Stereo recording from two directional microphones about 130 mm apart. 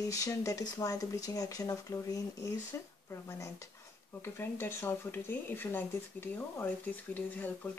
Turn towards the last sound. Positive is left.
turn(degrees=10)  # may be behind; listen again after turning